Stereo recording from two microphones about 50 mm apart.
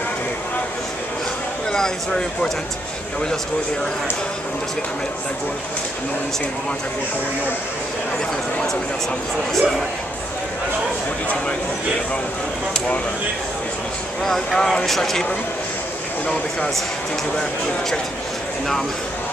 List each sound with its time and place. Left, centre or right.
1.7 s speech: centre
9.5 s speech: centre
12.7 s a sound: left
14.2 s speech: centre